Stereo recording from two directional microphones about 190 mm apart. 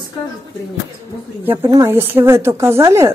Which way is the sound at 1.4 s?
15° right (ahead or behind).